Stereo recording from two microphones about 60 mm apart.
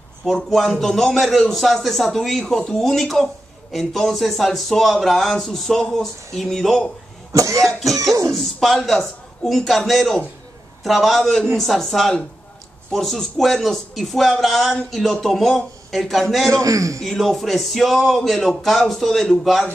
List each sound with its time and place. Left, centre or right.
0.2 s speech: centre
7.3 s speech: right
8.3 s speech: centre
16.4 s speech: right
17.0 s speech: centre